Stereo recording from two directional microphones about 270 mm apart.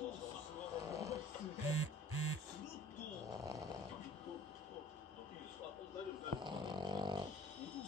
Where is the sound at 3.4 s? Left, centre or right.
Centre.